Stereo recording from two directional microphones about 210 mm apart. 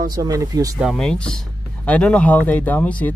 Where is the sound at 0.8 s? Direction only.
Centre (ahead or behind).